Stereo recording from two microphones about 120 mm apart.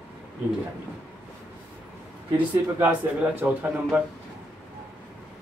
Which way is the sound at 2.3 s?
15° right (ahead or behind).